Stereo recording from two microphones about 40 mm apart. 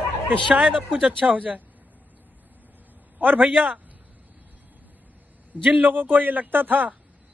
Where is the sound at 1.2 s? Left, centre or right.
Right.